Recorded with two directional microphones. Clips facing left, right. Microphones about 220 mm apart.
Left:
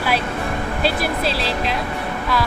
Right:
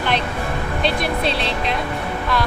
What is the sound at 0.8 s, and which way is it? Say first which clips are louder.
Speech: even; centre (ahead or behind).